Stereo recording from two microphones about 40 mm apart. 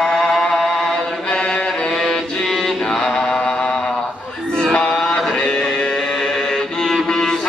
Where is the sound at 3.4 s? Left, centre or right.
Centre.